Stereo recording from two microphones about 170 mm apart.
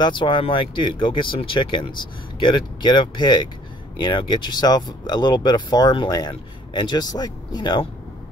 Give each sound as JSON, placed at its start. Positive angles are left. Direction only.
{"t": 0.0, "sound": "speech", "side_deg": 30}